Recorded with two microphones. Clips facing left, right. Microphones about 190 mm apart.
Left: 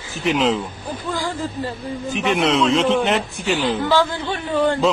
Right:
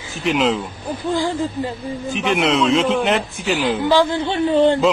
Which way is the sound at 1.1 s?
15° right (ahead or behind).